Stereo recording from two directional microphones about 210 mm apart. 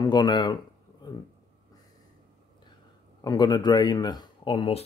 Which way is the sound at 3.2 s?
20° left (ahead or behind).